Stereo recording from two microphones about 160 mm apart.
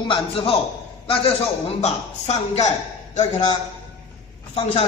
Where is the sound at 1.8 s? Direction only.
45° left (ahead or behind).